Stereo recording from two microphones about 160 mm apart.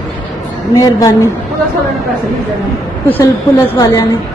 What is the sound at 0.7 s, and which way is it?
Speech, 20° left (ahead or behind).